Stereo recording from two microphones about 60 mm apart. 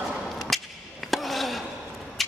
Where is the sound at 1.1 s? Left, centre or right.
Centre.